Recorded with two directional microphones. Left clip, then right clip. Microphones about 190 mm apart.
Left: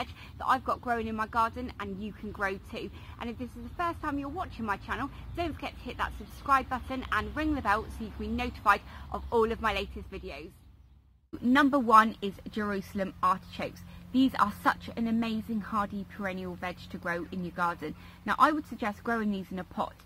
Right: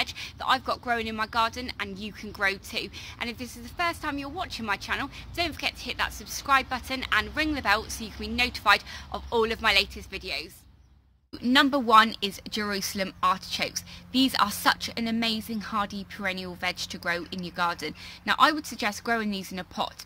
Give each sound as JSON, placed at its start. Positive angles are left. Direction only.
{"t": 0.0, "sound": "speech", "side_deg": -5}
{"t": 11.4, "sound": "speech", "side_deg": -15}